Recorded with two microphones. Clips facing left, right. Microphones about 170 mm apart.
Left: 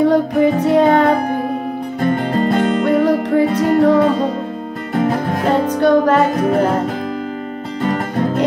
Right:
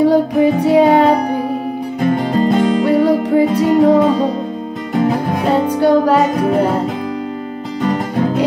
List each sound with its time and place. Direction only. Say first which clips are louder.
0.0 s music: right 1 dB; 10° right (ahead or behind)
5.3 s music: right 1 dB; 5° right (ahead or behind)
7.8 s music: right 2 dB; centre (ahead or behind)